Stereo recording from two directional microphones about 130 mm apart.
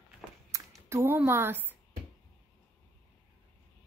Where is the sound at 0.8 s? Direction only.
20° right (ahead or behind).